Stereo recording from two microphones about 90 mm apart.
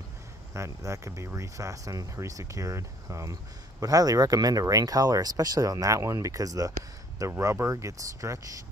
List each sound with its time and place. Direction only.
0.6 s speech: 35° right (ahead or behind)